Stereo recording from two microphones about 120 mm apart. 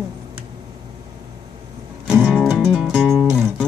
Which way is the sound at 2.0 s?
5° right (ahead or behind).